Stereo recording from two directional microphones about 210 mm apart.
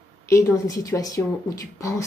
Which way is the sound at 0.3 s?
15° left (ahead or behind).